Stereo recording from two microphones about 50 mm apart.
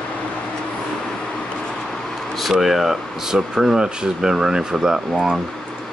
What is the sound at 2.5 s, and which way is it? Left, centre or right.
Speech, centre.